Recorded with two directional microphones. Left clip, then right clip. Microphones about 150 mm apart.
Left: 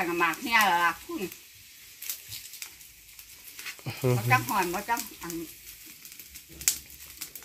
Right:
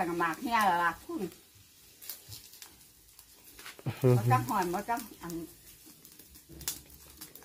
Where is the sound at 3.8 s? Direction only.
10° right (ahead or behind).